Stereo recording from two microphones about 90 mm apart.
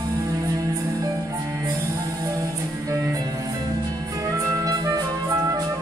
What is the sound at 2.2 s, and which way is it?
Music, 35° right (ahead or behind).